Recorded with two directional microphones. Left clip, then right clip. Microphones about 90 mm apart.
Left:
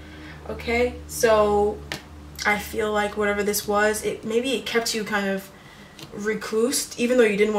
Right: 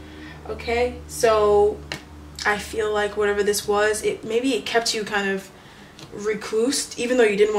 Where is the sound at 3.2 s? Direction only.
35° right (ahead or behind).